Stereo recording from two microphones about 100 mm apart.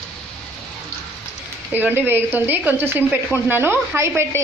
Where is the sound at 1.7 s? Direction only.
20° right (ahead or behind).